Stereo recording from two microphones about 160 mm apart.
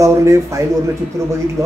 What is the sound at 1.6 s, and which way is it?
Speech, centre (ahead or behind).